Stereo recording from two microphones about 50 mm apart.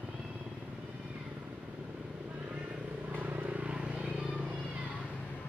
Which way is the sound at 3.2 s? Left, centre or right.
Right.